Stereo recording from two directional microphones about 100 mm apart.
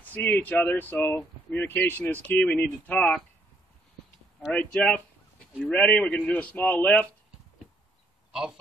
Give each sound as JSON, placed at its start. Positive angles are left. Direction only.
{"t": 0.1, "sound": "speech", "side_deg": 20}
{"t": 4.5, "sound": "speech", "side_deg": 15}
{"t": 8.3, "sound": "speech", "side_deg": -5}